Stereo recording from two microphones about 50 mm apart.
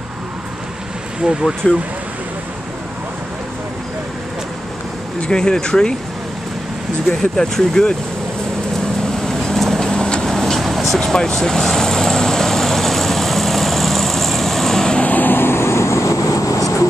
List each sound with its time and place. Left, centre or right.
1.6 s speech: centre
5.3 s speech: centre
7.1 s speech: centre
9.0 s vehicle: centre
10.3 s vehicle: centre
11.0 s vehicle: centre
15.0 s vehicle: left